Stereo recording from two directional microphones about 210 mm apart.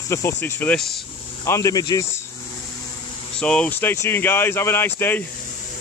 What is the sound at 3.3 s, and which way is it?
Speech, 5° left (ahead or behind).